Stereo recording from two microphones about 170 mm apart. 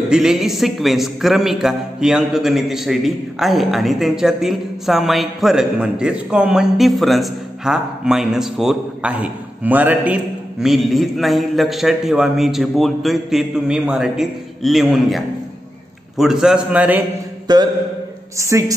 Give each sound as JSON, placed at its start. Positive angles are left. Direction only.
{"t": 0.1, "sound": "a man's voice", "side_deg": 0}
{"t": 17.5, "sound": "a sound", "side_deg": -25}
{"t": 18.4, "sound": "a woman's voice", "side_deg": -20}